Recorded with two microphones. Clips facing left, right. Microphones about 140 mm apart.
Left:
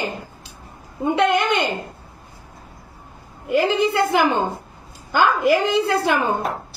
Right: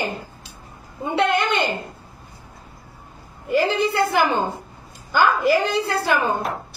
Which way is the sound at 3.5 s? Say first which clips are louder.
Left 2 dB; 20° left (ahead or behind).